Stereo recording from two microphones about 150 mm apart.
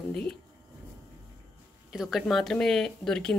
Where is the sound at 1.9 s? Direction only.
Centre (ahead or behind).